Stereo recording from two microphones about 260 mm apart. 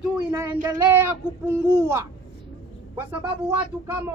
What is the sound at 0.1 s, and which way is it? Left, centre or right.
Speech, centre.